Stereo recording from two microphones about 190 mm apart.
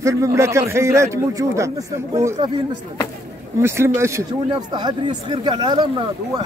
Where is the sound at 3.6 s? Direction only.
15° right (ahead or behind).